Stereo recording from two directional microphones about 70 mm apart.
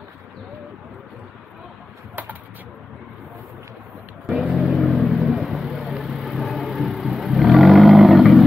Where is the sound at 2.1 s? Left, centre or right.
Right.